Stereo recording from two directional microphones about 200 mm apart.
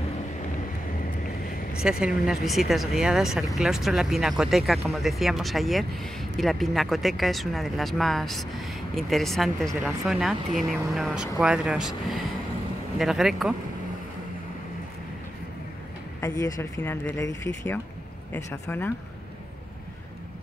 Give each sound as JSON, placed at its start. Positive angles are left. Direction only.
{"t": 1.8, "sound": "speech", "side_deg": -5}
{"t": 16.2, "sound": "speech", "side_deg": 15}
{"t": 18.3, "sound": "speech", "side_deg": 10}